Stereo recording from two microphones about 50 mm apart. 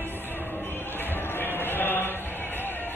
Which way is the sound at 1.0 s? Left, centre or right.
Left.